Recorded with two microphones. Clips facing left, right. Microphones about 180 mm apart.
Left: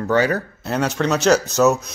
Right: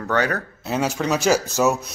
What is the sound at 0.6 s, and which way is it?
Speech, 5° right (ahead or behind).